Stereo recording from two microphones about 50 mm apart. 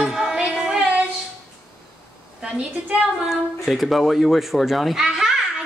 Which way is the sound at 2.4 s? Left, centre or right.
Centre.